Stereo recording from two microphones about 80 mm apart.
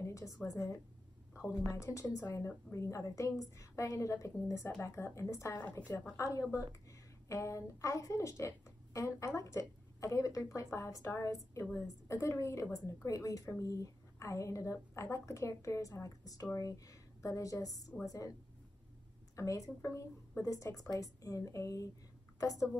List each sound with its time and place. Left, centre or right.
0.0 s a sound: left
0.5 s a woman's voice: left
1.3 s a sound: left
1.7 s a woman's voice: left
5.5 s a woman's voice: left
6.1 s a woman's voice: left
19.3 s a woman's voice: left